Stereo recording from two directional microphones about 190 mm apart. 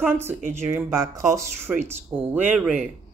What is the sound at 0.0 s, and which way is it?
A woman's voice, 10° right (ahead or behind).